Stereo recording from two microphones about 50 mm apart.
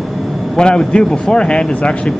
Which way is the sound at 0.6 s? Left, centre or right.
Centre.